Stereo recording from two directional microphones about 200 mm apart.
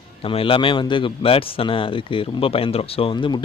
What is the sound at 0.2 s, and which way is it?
A man's voice, 25° left (ahead or behind).